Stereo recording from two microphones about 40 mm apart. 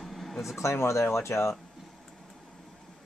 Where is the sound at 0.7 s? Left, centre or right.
Left.